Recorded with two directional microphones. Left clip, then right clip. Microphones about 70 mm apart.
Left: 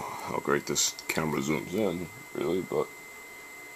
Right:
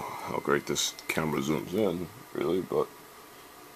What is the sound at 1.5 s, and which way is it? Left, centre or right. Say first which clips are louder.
Speech: right 1 dB; centre.